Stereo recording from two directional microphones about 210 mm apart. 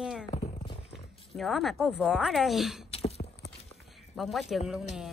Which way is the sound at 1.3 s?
Centre (ahead or behind).